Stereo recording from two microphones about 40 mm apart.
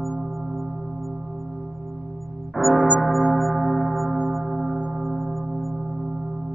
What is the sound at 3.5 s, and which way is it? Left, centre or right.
Church bell, right.